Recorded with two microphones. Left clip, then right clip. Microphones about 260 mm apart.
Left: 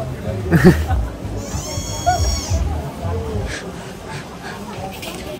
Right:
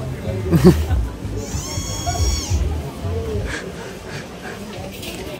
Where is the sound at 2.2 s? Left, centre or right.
Left.